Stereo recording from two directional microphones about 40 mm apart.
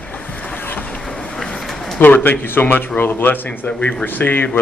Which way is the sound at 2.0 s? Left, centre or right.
Left.